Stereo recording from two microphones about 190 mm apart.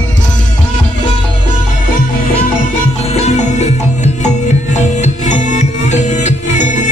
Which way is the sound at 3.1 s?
35° left (ahead or behind).